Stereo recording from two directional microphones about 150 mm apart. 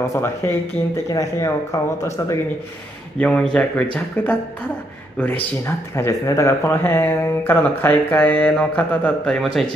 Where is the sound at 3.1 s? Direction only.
5° left (ahead or behind).